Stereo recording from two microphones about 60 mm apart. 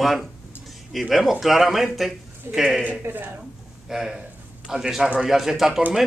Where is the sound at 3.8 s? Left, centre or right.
Centre.